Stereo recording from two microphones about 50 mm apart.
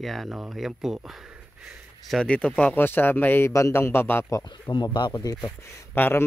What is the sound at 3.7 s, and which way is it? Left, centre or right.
A man's voice, left.